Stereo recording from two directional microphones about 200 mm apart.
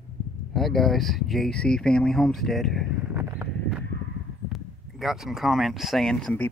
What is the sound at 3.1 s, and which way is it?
Horse, 10° right (ahead or behind).